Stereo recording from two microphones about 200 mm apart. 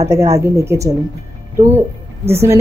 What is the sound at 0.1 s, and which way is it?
Speech, 15° right (ahead or behind).